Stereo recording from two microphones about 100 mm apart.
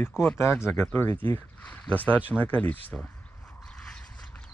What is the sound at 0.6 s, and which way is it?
Speech, 25° left (ahead or behind).